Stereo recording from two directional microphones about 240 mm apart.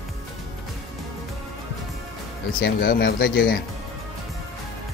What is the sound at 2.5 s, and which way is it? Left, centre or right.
Speech, left.